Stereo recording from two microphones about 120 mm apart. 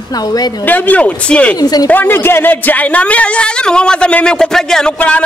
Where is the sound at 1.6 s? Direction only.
30° left (ahead or behind).